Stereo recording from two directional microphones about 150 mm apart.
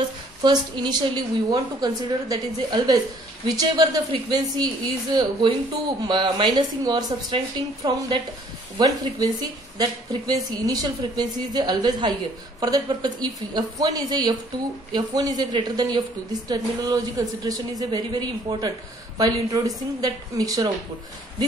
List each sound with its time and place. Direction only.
0.4 s speech: 30° right (ahead or behind)